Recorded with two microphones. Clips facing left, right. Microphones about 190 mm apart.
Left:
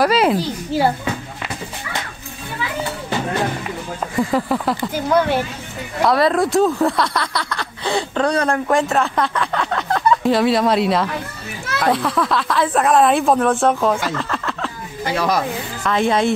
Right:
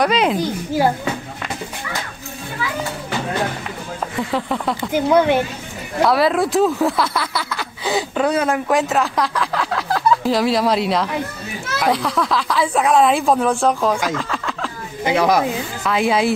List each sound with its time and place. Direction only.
0.0 s speech: 5° left (ahead or behind)
4.2 s speech: 5° left (ahead or behind)
4.9 s speech: 15° right (ahead or behind)
6.0 s speech: centre (ahead or behind)
15.0 s speech: 15° right (ahead or behind)
15.8 s speech: 5° right (ahead or behind)